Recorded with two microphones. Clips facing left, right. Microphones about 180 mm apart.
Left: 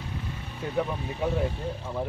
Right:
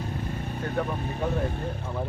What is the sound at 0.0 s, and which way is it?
Vehicle, 45° right (ahead or behind).